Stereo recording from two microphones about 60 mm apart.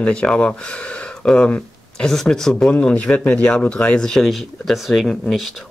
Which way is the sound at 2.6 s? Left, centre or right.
Left.